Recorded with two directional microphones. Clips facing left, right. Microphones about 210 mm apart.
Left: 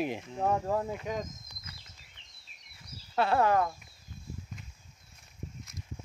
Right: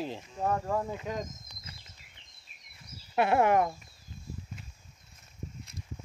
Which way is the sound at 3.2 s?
20° right (ahead or behind).